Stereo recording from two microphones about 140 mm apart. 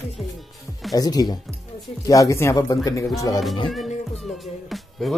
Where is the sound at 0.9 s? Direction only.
30° left (ahead or behind).